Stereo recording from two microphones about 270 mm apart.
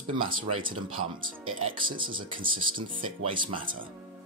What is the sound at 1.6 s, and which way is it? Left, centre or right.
Speech, right.